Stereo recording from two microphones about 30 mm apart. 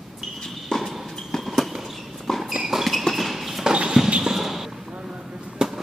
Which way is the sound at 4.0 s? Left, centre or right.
Centre.